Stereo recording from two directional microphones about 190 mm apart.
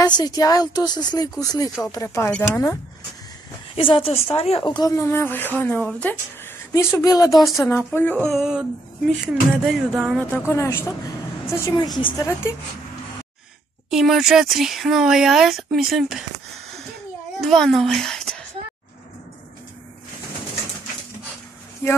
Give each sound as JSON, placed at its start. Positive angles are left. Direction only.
{"t": 0.0, "sound": "a woman's voice", "side_deg": 20}
{"t": 3.7, "sound": "a woman's voice", "side_deg": 30}
{"t": 7.3, "sound": "speech", "side_deg": 0}
{"t": 7.6, "sound": "speech", "side_deg": 10}
{"t": 10.5, "sound": "speech", "side_deg": 15}
{"t": 11.7, "sound": "a woman's voice", "side_deg": 25}
{"t": 13.8, "sound": "speech", "side_deg": 0}
{"t": 17.4, "sound": "speech", "side_deg": 0}